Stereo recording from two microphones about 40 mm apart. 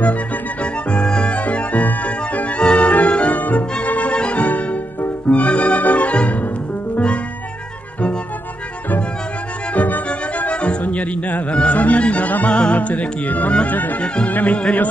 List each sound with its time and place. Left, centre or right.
0.9 s music: left
1.3 s music: left
3.3 s music: left
9.8 s music: left
10.5 s music: left
12.4 s music: left
14.0 s music: left